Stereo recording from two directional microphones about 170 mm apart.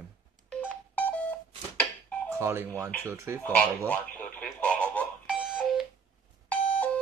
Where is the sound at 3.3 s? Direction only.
5° left (ahead or behind).